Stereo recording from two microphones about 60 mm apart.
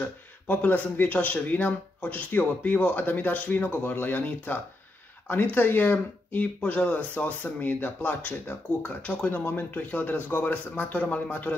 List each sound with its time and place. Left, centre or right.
0.0 s speech: left
9.4 s speech: left